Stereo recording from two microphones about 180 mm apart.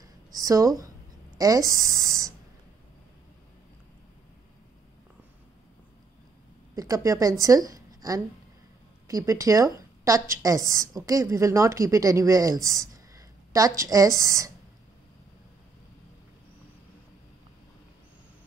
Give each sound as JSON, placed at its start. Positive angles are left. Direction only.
{"t": 0.0, "sound": "a sound", "side_deg": -20}
{"t": 1.4, "sound": "speech", "side_deg": -20}
{"t": 6.7, "sound": "a woman's voice", "side_deg": -20}